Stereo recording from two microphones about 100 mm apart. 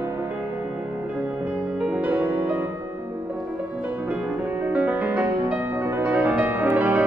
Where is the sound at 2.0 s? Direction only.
15° right (ahead or behind).